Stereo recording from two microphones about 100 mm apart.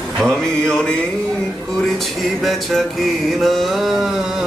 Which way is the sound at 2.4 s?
Centre (ahead or behind).